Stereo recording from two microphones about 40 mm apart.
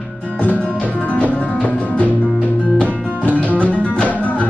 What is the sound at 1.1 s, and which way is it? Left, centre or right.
Music, left.